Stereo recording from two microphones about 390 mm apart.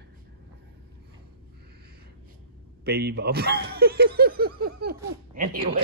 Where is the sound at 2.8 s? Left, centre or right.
Right.